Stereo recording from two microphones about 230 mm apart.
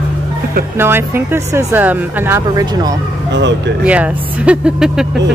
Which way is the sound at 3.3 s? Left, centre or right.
Right.